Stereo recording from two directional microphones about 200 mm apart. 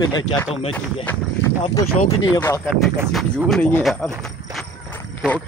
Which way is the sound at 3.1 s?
Centre (ahead or behind).